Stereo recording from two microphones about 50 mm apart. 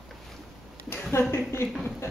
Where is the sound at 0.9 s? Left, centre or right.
Left.